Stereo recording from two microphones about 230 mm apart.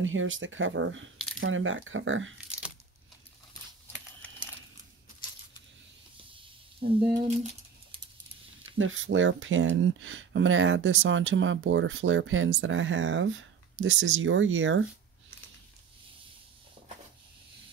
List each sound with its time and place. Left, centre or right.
0.0 s speech: right
3.8 s computer keyboard: centre
6.8 s speech: right
8.7 s speech: right